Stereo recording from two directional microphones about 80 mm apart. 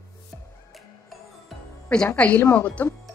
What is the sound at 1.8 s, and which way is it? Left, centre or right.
A woman's voice, centre.